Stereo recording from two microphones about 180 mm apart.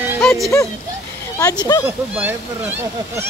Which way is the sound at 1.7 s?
20° left (ahead or behind).